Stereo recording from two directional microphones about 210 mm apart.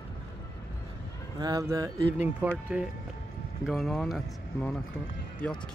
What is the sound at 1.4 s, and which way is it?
Speech, 15° right (ahead or behind).